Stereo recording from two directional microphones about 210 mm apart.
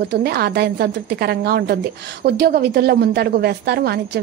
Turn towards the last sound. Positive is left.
turn(degrees=-50)  # may be behind; listen again after turning